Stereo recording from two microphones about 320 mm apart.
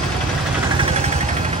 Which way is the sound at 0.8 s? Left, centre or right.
Centre.